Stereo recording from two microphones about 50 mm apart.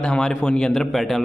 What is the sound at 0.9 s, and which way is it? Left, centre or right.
Speech, centre.